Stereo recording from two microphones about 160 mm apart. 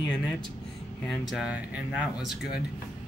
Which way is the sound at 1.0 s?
Centre (ahead or behind).